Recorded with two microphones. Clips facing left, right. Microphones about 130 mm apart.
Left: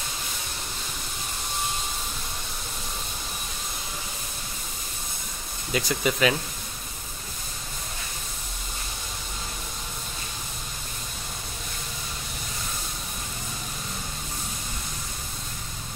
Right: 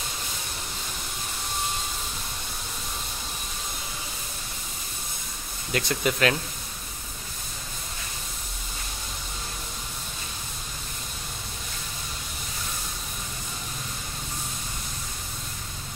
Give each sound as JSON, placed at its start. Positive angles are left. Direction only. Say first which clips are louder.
{"t": 5.7, "sound": "speech", "louder": "even", "side_deg": 0}